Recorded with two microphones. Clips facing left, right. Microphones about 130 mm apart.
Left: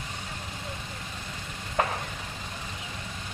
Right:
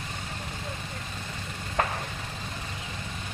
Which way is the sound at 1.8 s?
15° left (ahead or behind).